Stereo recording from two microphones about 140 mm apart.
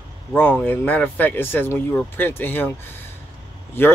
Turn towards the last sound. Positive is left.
turn(degrees=15)  # may be behind; listen again after turning